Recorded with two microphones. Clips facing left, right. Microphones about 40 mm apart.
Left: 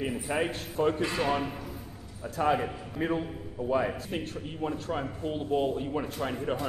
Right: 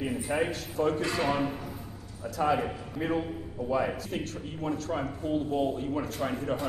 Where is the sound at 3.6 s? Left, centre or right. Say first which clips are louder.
Left 1 dB; left.